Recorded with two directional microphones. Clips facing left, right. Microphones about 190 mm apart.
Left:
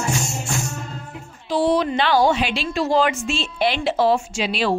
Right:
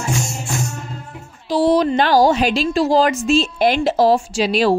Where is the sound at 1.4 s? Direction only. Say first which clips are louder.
Right 4 dB; 35° right (ahead or behind).